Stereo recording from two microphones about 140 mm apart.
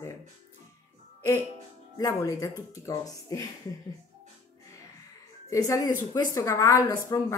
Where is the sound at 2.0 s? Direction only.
25° left (ahead or behind).